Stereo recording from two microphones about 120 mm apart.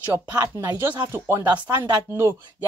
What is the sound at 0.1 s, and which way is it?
Speech, 25° right (ahead or behind).